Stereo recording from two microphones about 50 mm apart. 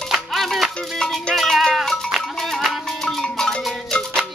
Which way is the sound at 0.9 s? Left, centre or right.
Centre.